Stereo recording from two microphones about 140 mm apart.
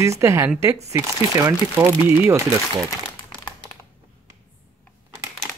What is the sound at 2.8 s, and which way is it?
Crumpling, 30° left (ahead or behind).